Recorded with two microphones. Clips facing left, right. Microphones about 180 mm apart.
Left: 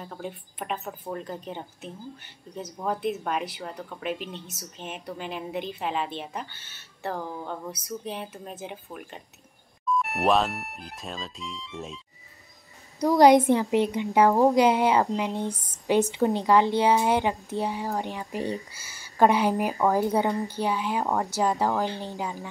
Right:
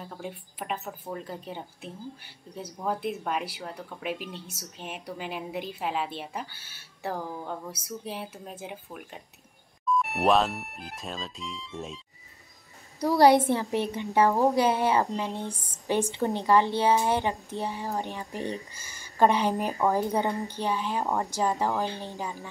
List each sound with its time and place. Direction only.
0.0 s speech: 5° right (ahead or behind)
13.1 s speech: 15° left (ahead or behind)
21.0 s speech: 5° right (ahead or behind)
21.4 s speech: 10° left (ahead or behind)